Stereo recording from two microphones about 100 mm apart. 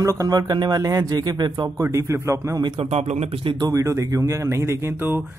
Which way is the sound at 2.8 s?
90° right.